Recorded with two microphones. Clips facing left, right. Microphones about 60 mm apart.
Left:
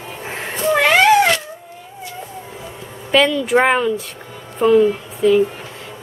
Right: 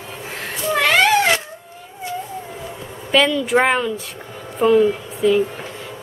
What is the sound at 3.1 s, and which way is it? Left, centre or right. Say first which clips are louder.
Speech: left 2 dB; centre.